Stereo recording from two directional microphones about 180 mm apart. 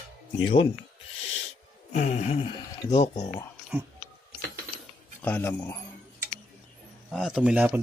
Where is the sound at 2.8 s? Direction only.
20° left (ahead or behind).